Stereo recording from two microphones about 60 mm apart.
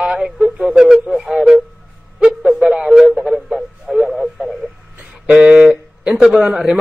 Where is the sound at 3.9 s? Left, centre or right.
Centre.